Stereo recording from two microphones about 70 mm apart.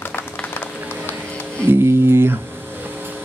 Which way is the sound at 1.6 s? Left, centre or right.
Right.